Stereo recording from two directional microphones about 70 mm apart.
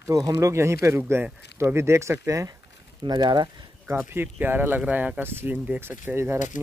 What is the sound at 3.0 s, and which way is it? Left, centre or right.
Speech, right.